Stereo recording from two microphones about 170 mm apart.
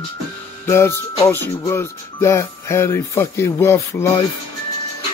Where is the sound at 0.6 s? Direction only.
15° left (ahead or behind).